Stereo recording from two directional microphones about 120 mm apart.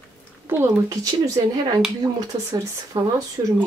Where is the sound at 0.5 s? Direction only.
20° right (ahead or behind).